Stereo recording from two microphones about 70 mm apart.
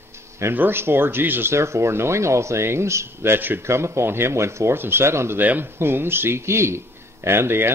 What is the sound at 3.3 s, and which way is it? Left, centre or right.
Speech, right.